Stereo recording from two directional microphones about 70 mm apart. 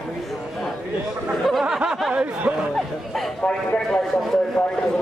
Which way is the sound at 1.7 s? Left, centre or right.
Centre.